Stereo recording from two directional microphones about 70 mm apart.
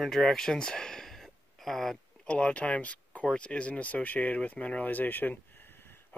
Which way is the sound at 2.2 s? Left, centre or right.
Centre.